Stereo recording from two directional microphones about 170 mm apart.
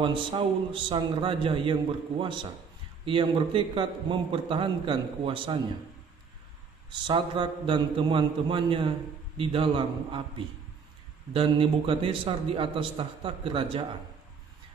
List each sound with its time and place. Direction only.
0.0 s a man's voice: 30° right (ahead or behind)
7.1 s a man's voice: 30° right (ahead or behind)